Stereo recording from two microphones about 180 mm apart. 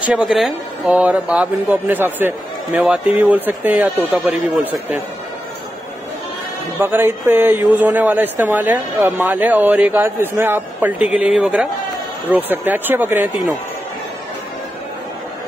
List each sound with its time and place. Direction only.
0.1 s speech: centre (ahead or behind)
6.8 s speech: 10° right (ahead or behind)